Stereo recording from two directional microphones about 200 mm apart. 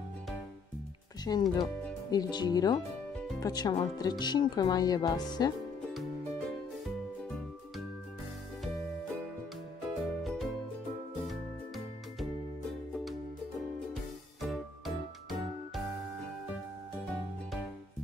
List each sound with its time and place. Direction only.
1.2 s speech: 20° left (ahead or behind)
10.0 s music: centre (ahead or behind)
14.4 s music: centre (ahead or behind)